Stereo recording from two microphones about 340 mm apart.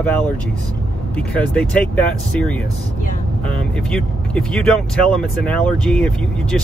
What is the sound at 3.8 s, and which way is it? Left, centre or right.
Speech, centre.